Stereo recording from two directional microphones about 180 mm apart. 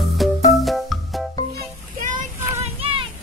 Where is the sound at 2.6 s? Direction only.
30° right (ahead or behind).